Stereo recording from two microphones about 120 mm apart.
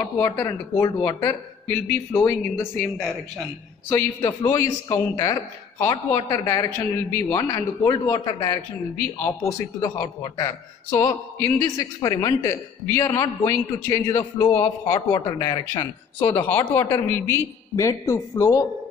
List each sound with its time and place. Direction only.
0.0 s a woman's voice: 25° left (ahead or behind)
1.7 s a woman's voice: 20° left (ahead or behind)
4.2 s a woman's voice: 30° left (ahead or behind)
16.2 s a woman's voice: 15° left (ahead or behind)